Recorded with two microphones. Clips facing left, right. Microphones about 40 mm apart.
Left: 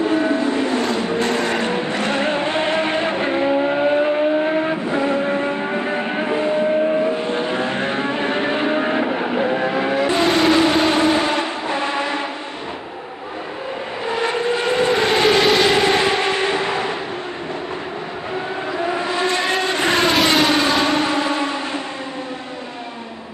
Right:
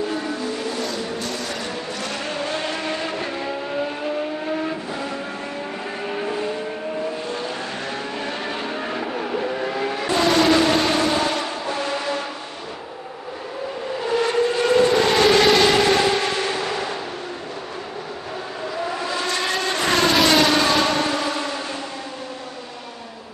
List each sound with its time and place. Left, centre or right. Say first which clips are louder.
0.0 s vehicle: left 8 dB; left
14.2 s vehicle: left 1 dB; left
18.9 s vehicle: left 4 dB; left
20.2 s civil defense siren: left 1 dB; left